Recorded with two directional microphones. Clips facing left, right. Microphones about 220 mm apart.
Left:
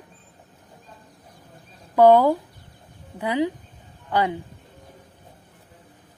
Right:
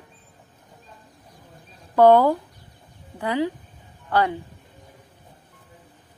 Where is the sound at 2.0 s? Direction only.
10° left (ahead or behind).